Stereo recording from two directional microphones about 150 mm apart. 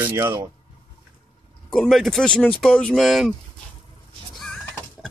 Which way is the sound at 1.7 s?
5° left (ahead or behind).